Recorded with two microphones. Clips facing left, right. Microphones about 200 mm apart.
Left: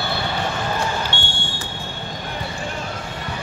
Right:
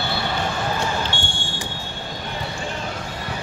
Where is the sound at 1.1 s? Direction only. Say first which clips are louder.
Even; 60° left (ahead or behind).